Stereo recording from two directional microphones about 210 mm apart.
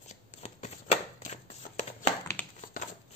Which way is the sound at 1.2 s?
35° left (ahead or behind).